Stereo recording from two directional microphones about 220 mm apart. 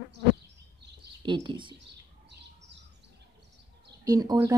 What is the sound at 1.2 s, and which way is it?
Speech, 20° right (ahead or behind).